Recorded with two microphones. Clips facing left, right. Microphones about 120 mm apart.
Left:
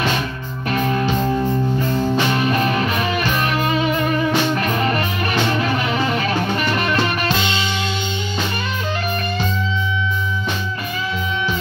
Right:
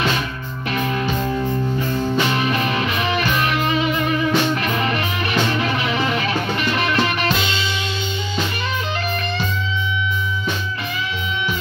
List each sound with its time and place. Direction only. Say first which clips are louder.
0.7 s music: left 3 dB; 40° left (ahead or behind)